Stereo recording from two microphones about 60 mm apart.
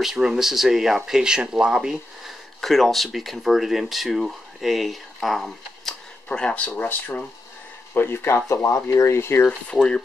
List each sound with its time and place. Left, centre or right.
0.0 s speech: centre
2.6 s speech: centre
6.2 s speech: centre
7.9 s speech: left
9.7 s speech: centre